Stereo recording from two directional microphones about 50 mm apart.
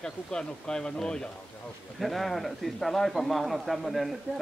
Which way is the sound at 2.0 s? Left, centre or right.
Centre.